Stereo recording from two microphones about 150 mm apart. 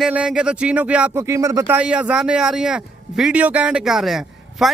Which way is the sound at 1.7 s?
10° right (ahead or behind).